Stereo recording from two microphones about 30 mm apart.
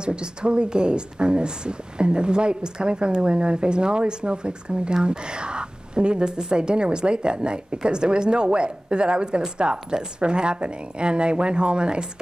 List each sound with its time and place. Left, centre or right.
0.0 s a woman's voice: right